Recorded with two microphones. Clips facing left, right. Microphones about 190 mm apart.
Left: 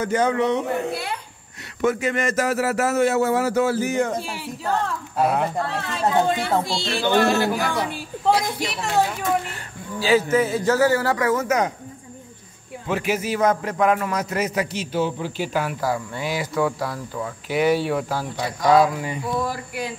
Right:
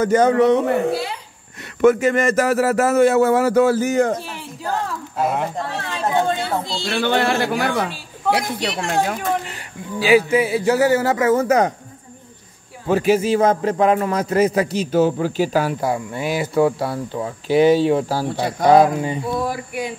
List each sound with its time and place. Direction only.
0.0 s speech: 45° right (ahead or behind)
1.8 s speech: 50° right (ahead or behind)
4.6 s speech: centre (ahead or behind)
7.0 s speech: 65° right (ahead or behind)
9.5 s a man's voice: 15° right (ahead or behind); by 11.7 s 35° right (ahead or behind)
12.8 s a man's voice: 35° right (ahead or behind)
15.8 s a man's voice: 25° right (ahead or behind)
19.4 s a man's voice: 15° right (ahead or behind)